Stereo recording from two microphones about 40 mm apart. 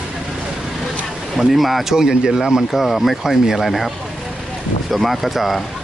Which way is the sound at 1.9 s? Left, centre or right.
Centre.